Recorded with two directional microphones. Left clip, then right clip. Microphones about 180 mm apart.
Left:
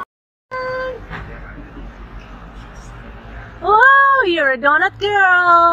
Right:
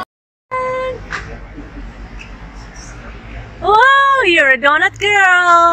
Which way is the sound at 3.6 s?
5° left (ahead or behind).